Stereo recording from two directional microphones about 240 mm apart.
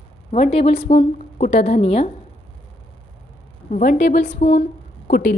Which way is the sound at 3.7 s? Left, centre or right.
Left.